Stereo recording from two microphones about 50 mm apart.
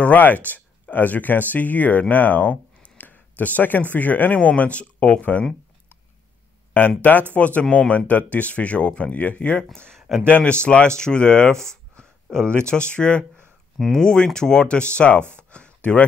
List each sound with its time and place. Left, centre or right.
0.0 s speech: left
7.0 s speech: left
9.7 s speech: centre
10.2 s speech: left
12.0 s a sound: centre
12.6 s speech: left